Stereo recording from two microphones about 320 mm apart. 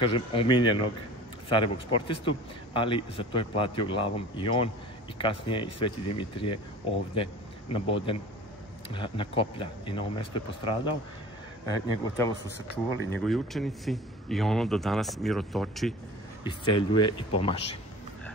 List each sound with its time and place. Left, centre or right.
0.0 s speech: centre
7.7 s a man's voice: centre
16.4 s speech: centre